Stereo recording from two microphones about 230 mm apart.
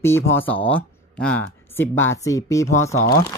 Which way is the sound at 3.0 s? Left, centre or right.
Left.